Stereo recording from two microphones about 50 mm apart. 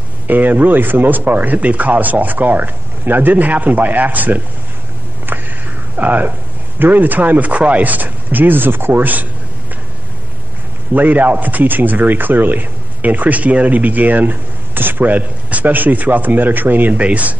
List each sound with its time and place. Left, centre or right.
0.3 s a man's voice: right
5.9 s a man's voice: right
10.9 s a man's voice: right